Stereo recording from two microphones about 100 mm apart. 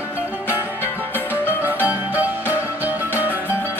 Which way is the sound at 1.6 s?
15° right (ahead or behind).